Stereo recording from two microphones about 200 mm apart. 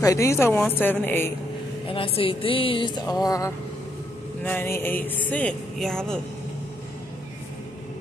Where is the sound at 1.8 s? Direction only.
25° left (ahead or behind); by 6.2 s 5° left (ahead or behind).